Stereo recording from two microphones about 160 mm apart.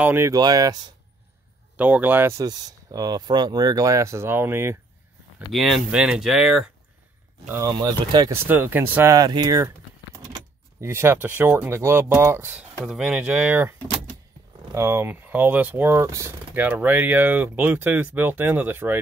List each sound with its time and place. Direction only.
0.0 s speech: 15° right (ahead or behind)
1.8 s speech: 10° right (ahead or behind)
5.5 s speech: centre (ahead or behind)
7.4 s speech: 20° right (ahead or behind)
8.5 s speech: 15° right (ahead or behind)
10.1 s keys jangling: 25° right (ahead or behind)
10.9 s speech: 15° right (ahead or behind)